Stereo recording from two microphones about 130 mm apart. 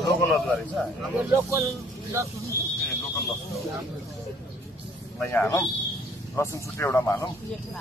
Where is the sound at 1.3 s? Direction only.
20° right (ahead or behind).